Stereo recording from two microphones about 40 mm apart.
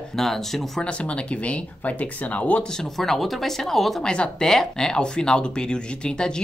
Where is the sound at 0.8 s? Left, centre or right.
Left.